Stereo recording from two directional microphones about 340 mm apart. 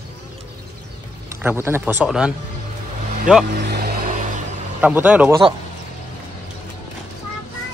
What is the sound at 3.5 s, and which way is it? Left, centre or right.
Vehicle, right.